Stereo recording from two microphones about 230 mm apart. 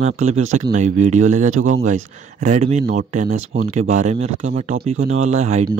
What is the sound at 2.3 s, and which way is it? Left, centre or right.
Speech, right.